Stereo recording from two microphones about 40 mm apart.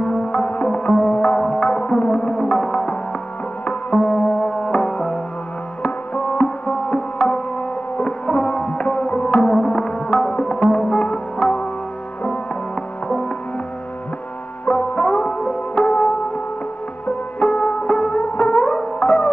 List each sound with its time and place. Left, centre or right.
0.3 s music: left
1.4 s music: centre
3.6 s music: left
9.6 s music: centre
10.6 s music: left
14.7 s music: left
17.4 s music: left